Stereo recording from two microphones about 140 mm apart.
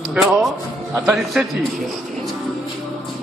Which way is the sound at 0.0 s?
Centre (ahead or behind).